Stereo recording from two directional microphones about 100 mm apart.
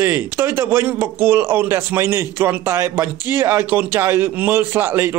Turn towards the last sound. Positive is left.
turn(degrees=-20)  # may be behind; listen again after turning